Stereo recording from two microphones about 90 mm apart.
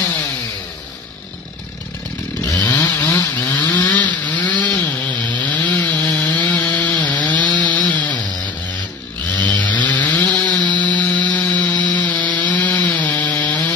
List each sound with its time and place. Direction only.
2.6 s chainsaw: 20° left (ahead or behind)
7.9 s a sound: 15° left (ahead or behind)
9.3 s chainsaw: 15° left (ahead or behind)